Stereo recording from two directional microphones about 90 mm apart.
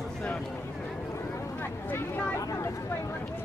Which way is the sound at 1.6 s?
20° left (ahead or behind).